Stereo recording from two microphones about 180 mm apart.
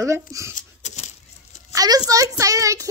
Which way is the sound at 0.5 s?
40° left (ahead or behind).